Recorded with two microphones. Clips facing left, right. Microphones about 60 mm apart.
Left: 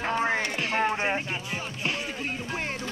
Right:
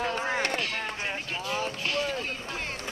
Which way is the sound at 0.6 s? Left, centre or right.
Left.